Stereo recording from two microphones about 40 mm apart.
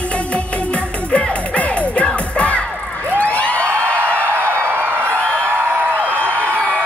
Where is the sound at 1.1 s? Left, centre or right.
Left.